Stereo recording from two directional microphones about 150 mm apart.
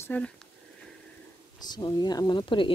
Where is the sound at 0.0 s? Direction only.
10° left (ahead or behind).